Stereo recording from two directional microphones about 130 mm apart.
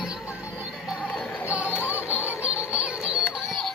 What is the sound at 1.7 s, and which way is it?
Music, 20° left (ahead or behind).